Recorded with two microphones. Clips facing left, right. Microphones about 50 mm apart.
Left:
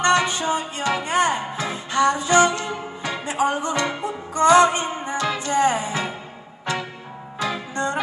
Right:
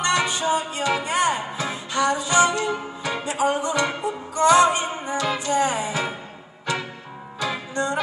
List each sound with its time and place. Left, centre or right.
0.0 s music: left
7.3 s music: left